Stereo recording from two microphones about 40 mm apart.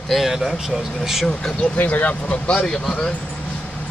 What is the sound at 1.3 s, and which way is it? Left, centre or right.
Speech, centre.